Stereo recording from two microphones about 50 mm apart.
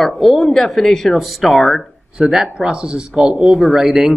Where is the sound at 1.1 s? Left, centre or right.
Centre.